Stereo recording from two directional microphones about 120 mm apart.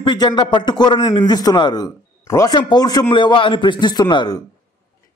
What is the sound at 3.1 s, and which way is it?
Speech, 45° left (ahead or behind).